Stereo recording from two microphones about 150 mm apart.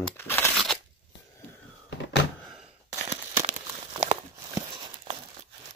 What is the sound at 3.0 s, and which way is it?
Crumpling, 45° right (ahead or behind).